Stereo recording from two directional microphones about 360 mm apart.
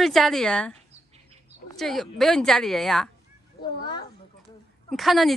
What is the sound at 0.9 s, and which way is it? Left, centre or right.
Bird, centre.